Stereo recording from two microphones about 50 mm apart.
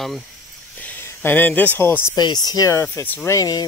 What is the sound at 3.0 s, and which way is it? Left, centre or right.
Speech, left.